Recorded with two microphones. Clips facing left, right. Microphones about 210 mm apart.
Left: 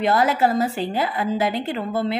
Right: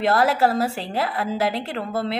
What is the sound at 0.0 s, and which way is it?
Speech, centre (ahead or behind).